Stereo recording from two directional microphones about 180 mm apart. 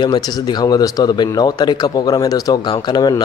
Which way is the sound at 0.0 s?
25° left (ahead or behind).